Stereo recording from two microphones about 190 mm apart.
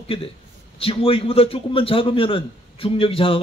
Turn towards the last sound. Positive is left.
turn(degrees=30)  # may be behind; listen again after turning